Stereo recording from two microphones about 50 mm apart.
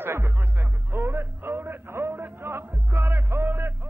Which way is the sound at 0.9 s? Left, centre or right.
Right.